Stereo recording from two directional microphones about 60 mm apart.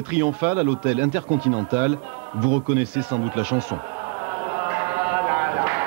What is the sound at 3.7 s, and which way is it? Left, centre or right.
Insect, right.